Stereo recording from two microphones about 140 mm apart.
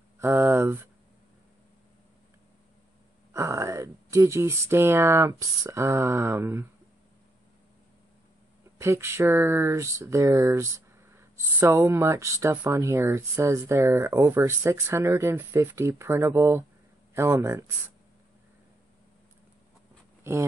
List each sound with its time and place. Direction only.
0.2 s speech: 15° right (ahead or behind)
3.3 s speech: 20° right (ahead or behind)
8.7 s speech: 20° right (ahead or behind)
20.2 s speech: 20° right (ahead or behind)